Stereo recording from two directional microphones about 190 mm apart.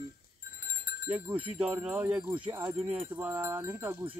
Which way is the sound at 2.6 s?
30° right (ahead or behind).